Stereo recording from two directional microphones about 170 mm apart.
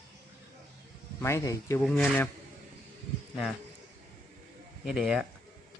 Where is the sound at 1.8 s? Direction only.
Centre (ahead or behind).